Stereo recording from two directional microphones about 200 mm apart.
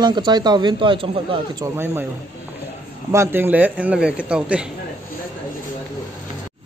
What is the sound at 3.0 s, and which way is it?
Speech, 10° right (ahead or behind).